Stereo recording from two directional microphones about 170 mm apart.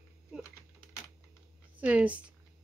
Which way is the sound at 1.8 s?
10° right (ahead or behind).